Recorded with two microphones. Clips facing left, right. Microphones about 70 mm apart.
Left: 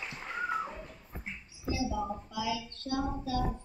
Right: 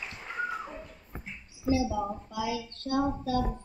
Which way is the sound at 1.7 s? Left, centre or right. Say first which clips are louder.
Right 5 dB; right.